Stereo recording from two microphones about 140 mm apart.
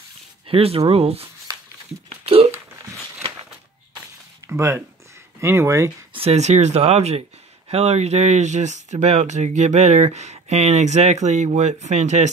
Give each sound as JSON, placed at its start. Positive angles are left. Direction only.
{"t": 0.5, "sound": "speech", "side_deg": -40}
{"t": 2.0, "sound": "a sound", "side_deg": -45}
{"t": 4.5, "sound": "speech", "side_deg": -20}
{"t": 6.1, "sound": "speech", "side_deg": -50}